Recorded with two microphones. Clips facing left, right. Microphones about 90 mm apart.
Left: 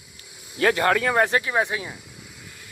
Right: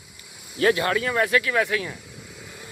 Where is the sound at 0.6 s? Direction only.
40° left (ahead or behind).